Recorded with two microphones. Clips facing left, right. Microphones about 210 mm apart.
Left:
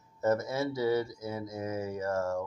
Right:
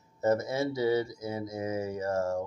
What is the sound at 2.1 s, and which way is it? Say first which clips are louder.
Mantra: right 1 dB; 35° right (ahead or behind).